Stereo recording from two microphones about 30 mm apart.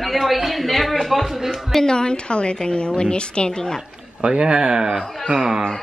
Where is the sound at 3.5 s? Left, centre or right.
Left.